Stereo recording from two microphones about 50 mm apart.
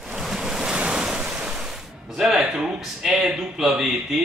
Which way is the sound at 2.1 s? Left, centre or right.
Centre.